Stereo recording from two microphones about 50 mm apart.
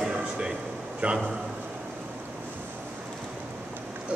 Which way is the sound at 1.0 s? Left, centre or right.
Right.